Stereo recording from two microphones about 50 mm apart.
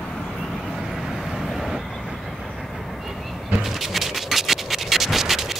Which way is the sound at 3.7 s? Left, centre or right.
Centre.